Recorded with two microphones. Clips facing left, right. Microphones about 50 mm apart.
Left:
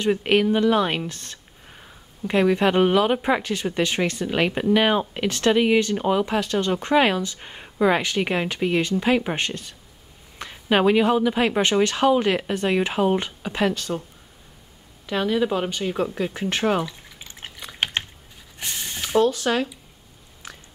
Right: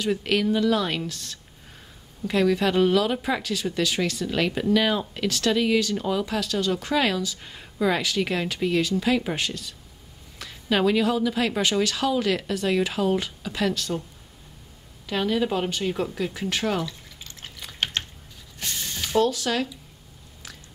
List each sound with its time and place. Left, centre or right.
0.0 s speech: left
15.0 s a woman's voice: centre
16.4 s drip: left
18.6 s a sound: centre